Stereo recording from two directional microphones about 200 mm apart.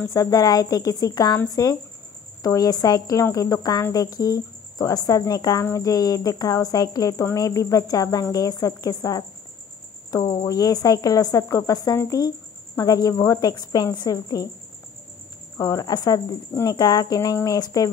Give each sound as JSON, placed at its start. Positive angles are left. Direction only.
{"t": 0.1, "sound": "speech", "side_deg": 15}
{"t": 15.5, "sound": "speech", "side_deg": 15}